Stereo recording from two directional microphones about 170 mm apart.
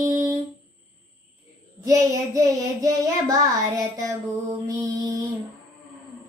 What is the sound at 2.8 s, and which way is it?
Child singing, 20° right (ahead or behind).